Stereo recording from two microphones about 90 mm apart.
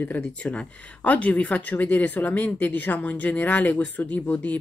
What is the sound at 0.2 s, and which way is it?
Speech, 10° left (ahead or behind).